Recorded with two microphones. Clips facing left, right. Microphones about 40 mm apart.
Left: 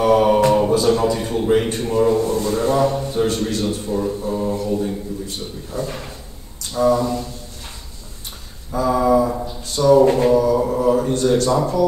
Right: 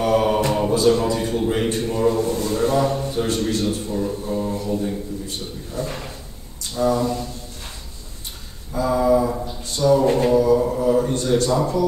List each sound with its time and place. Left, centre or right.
0.0 s mantra: centre
0.7 s a man's voice: centre
8.8 s mantra: centre
9.5 s a sound: centre
10.7 s mantra: centre
11.0 s a man's voice: centre